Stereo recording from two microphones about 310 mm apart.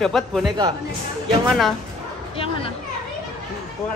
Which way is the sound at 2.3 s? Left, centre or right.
Centre.